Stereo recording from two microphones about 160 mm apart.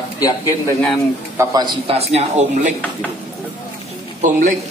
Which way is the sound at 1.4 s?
25° right (ahead or behind).